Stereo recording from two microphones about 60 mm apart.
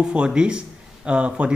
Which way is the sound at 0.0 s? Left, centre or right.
Centre.